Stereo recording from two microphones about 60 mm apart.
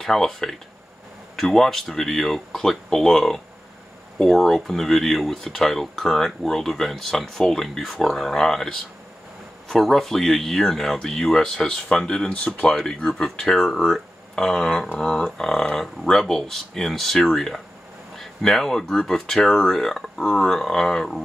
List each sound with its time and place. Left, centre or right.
0.0 s speech: centre